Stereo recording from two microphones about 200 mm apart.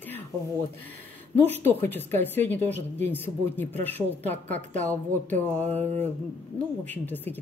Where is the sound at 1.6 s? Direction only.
10° left (ahead or behind).